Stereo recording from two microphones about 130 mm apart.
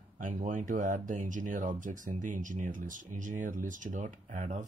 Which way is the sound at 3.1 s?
80° right.